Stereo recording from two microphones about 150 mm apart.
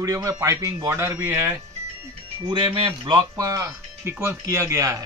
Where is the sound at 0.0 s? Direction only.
20° right (ahead or behind).